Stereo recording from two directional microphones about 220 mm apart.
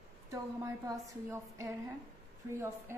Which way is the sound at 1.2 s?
15° right (ahead or behind).